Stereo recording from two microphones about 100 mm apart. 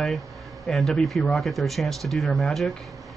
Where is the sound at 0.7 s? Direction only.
5° left (ahead or behind).